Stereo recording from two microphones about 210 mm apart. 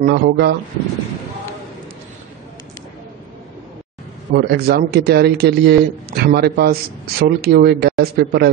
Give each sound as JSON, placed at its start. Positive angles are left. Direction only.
{"t": 0.0, "sound": "a man's voice", "side_deg": -55}
{"t": 4.4, "sound": "a man's voice", "side_deg": -50}